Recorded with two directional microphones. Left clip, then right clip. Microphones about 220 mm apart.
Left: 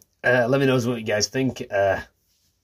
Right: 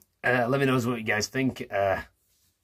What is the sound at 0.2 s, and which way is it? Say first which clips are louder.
Speech: left 5 dB; 5° right (ahead or behind).